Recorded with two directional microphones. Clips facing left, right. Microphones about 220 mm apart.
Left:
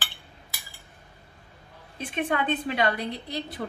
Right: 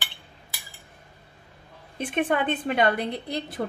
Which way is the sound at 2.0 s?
50° right (ahead or behind).